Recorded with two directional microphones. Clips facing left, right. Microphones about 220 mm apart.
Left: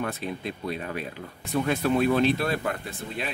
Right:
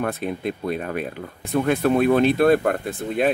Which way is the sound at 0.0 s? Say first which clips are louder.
Right 6 dB; 55° right (ahead or behind).